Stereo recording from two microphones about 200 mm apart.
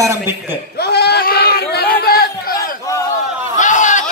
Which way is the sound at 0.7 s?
55° left (ahead or behind).